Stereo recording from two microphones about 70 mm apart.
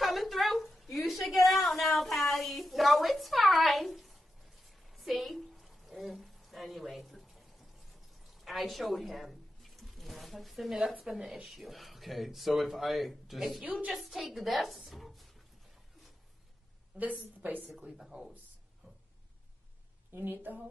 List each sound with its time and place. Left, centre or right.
0.0 s a sound: centre
11.4 s speech: centre
13.6 s a woman's voice: centre
13.9 s speech: centre
17.0 s a woman's voice: right
17.9 s speech: centre
20.1 s a woman's voice: right